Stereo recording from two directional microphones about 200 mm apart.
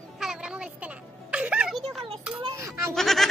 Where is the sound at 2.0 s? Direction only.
25° right (ahead or behind).